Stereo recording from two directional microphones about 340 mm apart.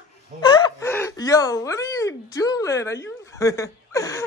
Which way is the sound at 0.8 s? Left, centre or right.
Centre.